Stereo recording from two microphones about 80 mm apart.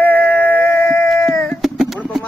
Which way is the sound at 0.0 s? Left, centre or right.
Left.